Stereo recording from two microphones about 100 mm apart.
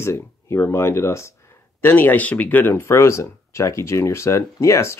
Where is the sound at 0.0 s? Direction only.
25° left (ahead or behind).